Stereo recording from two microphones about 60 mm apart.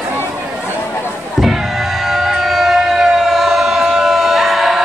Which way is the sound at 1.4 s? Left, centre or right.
Centre.